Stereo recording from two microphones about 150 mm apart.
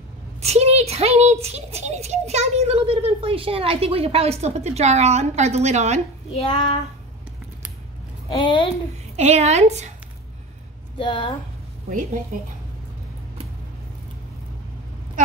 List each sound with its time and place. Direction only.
0.4 s a woman's voice: 45° right (ahead or behind)
6.3 s child singing: 35° left (ahead or behind)
8.3 s child singing: 35° left (ahead or behind)
9.1 s a woman's voice: 45° right (ahead or behind)
11.0 s child singing: 35° left (ahead or behind)